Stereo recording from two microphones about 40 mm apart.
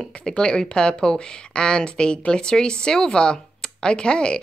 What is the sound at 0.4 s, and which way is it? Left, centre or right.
A woman's voice, centre.